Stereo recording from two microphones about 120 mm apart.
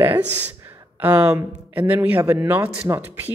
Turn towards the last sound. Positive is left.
turn(degrees=-15)  # may be behind; listen again after turning